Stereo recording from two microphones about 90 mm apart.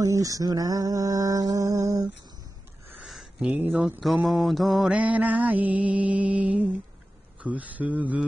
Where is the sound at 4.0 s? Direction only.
Centre (ahead or behind).